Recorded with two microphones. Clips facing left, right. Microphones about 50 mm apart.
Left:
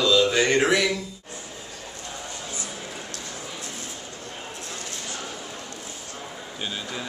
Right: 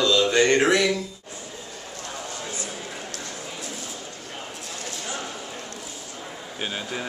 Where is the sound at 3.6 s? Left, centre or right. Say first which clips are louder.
Right 1 dB; left.